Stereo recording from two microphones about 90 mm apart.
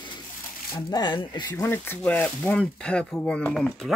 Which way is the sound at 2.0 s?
15° left (ahead or behind).